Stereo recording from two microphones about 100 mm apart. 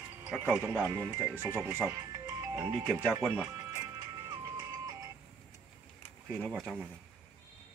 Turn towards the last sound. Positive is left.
turn(degrees=-10)  # may be behind; listen again after turning